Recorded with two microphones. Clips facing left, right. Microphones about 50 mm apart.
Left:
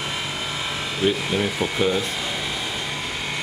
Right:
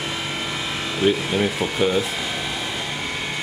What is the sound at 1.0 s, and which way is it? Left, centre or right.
Speech, centre.